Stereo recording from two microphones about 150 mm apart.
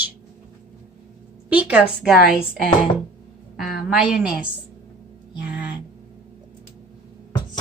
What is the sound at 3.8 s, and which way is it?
Speech, 5° right (ahead or behind).